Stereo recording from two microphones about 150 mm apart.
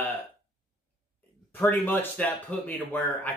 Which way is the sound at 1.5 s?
15° left (ahead or behind).